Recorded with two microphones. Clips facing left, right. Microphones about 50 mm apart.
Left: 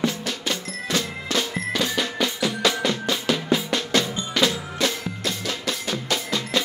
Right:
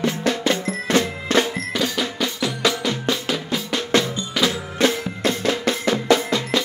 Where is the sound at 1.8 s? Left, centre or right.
Centre.